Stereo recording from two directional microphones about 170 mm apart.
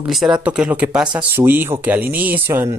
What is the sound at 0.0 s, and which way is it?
Speech, centre (ahead or behind).